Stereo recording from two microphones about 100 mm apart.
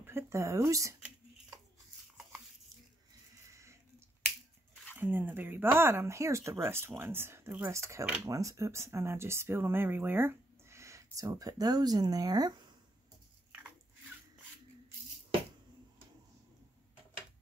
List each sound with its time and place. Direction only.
0.0 s speech: 25° right (ahead or behind)
3.4 s a sound: 30° right (ahead or behind)
4.9 s speech: 20° right (ahead or behind); by 12.7 s 45° right (ahead or behind)